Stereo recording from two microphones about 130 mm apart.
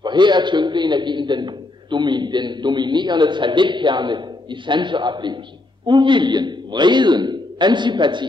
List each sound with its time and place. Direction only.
0.0 s a man's voice: 35° right (ahead or behind)